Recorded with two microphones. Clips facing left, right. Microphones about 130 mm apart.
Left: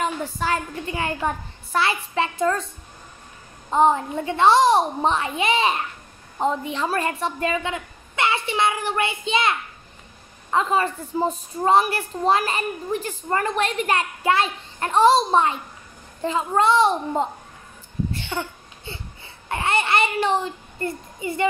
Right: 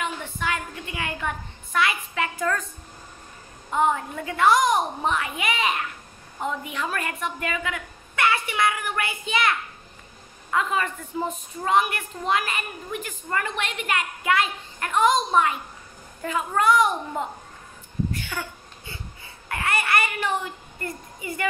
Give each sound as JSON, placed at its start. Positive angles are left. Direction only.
{"t": 0.0, "sound": "a woman's voice", "side_deg": 35}
{"t": 3.7, "sound": "a woman's voice", "side_deg": 30}